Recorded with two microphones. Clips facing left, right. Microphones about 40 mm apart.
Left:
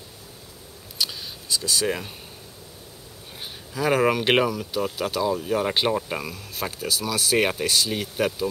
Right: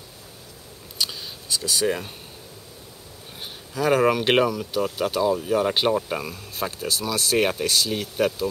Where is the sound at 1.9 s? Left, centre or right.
Centre.